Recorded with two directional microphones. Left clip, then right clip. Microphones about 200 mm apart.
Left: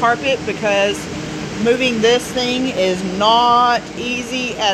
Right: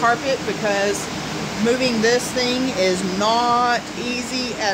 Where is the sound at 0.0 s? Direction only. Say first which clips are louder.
Left 3 dB; centre (ahead or behind).